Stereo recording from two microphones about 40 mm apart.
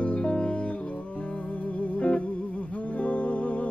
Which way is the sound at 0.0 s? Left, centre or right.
Left.